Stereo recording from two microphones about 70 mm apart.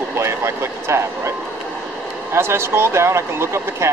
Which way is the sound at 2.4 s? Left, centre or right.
Right.